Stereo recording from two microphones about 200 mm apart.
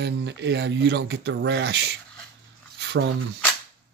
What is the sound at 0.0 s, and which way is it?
A man's voice, 60° right (ahead or behind).